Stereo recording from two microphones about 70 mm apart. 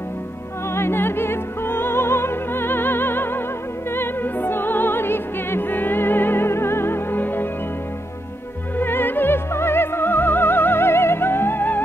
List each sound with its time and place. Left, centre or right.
0.7 s music: left
8.7 s music: left